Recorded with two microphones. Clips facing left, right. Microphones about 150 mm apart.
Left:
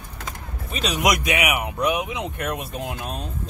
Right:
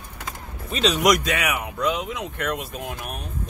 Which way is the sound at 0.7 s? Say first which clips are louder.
Right 3 dB; 5° left (ahead or behind).